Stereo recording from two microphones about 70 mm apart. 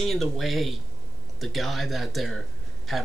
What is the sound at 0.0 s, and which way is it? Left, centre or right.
Speech, centre.